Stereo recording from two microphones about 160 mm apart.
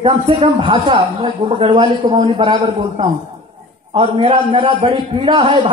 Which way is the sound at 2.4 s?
35° right (ahead or behind).